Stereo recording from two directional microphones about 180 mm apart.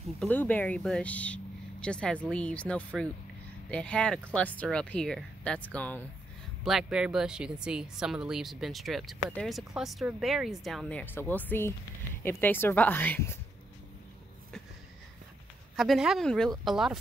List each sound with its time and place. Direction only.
0.2 s speech: 10° left (ahead or behind)
15.7 s speech: centre (ahead or behind)